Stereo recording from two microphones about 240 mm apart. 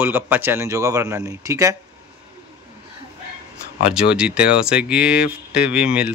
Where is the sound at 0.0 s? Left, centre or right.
Centre.